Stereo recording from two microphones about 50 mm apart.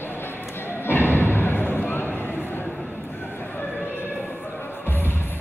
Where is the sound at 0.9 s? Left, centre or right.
Left.